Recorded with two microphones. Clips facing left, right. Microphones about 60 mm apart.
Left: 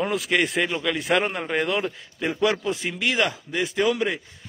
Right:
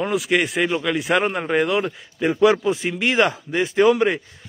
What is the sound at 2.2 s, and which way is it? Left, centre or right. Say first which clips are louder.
Speech: right 6 dB; centre.